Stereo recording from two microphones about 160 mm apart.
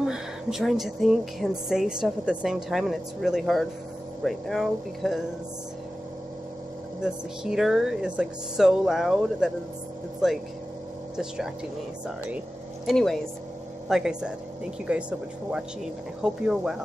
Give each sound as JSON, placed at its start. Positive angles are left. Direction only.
{"t": 0.0, "sound": "a woman's voice", "side_deg": -5}
{"t": 7.0, "sound": "a woman's voice", "side_deg": -5}
{"t": 12.8, "sound": "a woman's voice", "side_deg": 0}